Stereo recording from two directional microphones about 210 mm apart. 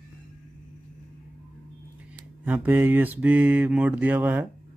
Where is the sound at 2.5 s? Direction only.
10° right (ahead or behind).